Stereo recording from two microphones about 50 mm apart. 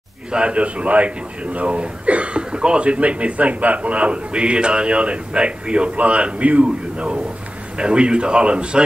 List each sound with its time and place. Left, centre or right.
0.3 s a man's voice: right